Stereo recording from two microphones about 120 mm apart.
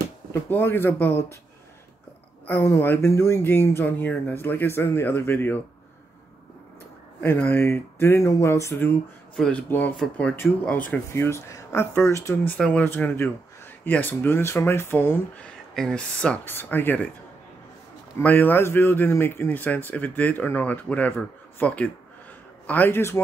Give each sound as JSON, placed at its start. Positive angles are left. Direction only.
{"t": 0.3, "sound": "speech", "side_deg": 20}
{"t": 2.4, "sound": "speech", "side_deg": 20}
{"t": 7.2, "sound": "speech", "side_deg": 15}
{"t": 9.4, "sound": "speech", "side_deg": 10}
{"t": 12.4, "sound": "speech", "side_deg": 10}
{"t": 15.7, "sound": "speech", "side_deg": 5}
{"t": 18.2, "sound": "speech", "side_deg": 15}